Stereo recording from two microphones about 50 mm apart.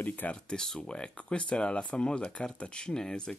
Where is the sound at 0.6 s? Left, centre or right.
Centre.